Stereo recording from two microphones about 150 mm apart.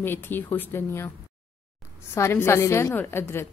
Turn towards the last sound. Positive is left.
turn(degrees=15)  # may be behind; listen again after turning